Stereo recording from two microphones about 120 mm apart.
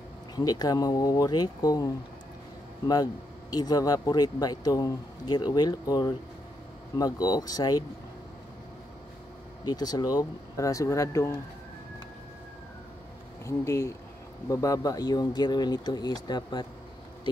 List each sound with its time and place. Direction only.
0.4 s speech: 30° left (ahead or behind)
2.9 s speech: 30° left (ahead or behind)
9.7 s speech: 35° left (ahead or behind)
13.5 s speech: 25° left (ahead or behind)